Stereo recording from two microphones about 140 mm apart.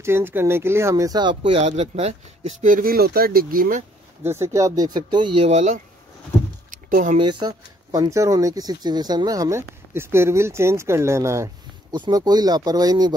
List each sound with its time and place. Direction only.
0.0 s speech: 15° right (ahead or behind); by 2.7 s 50° right (ahead or behind)
2.7 s speech: 90° right
4.2 s speech: 20° right (ahead or behind); by 5.5 s 35° right (ahead or behind)
5.5 s speech: 55° right (ahead or behind)
6.7 s a sound: 65° right (ahead or behind)
7.2 s speech: 30° right (ahead or behind)